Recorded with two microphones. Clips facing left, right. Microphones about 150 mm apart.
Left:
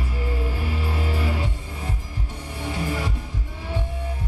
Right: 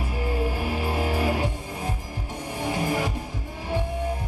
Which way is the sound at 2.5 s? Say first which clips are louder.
Right 2 dB; 45° right (ahead or behind).